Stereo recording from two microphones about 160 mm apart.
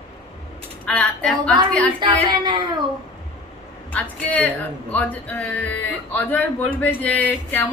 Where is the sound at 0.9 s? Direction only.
5° left (ahead or behind).